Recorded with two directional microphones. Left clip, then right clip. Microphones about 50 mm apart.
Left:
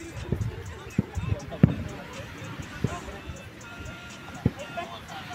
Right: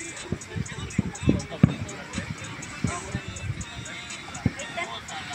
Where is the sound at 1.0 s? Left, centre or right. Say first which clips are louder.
Even; left.